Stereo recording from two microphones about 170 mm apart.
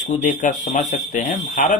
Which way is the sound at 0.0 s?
50° left (ahead or behind).